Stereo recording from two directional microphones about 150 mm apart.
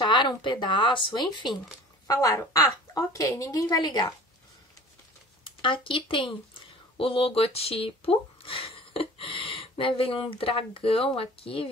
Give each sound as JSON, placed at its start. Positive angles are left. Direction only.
{"t": 0.0, "sound": "a woman's voice", "side_deg": 30}
{"t": 5.4, "sound": "speech", "side_deg": 35}